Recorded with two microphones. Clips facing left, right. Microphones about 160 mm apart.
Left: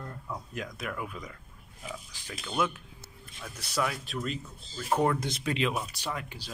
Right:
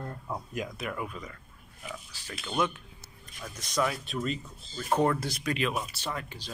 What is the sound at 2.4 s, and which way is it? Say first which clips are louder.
Speech: right 1 dB; centre (ahead or behind).